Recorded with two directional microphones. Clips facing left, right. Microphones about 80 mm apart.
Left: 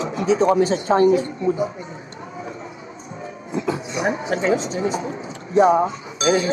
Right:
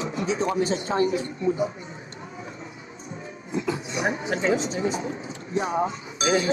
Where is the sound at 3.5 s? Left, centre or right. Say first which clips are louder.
Left 3 dB; left.